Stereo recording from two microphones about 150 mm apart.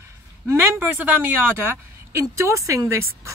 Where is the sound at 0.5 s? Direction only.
15° right (ahead or behind).